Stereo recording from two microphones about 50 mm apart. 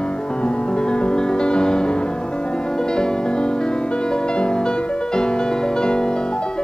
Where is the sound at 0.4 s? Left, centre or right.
Centre.